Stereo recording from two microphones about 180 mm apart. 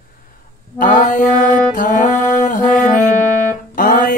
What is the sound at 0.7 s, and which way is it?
Music, 45° left (ahead or behind).